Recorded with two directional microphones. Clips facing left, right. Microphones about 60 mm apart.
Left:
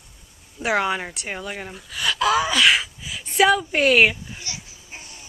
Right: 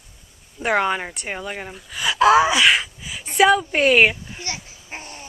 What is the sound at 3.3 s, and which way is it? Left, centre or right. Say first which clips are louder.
A woman's voice: right 2 dB; centre.